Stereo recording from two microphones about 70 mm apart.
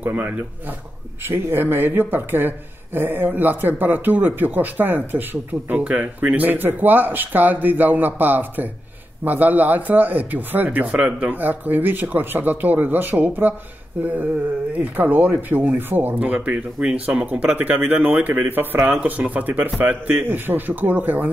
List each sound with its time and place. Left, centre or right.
0.0 s speech: right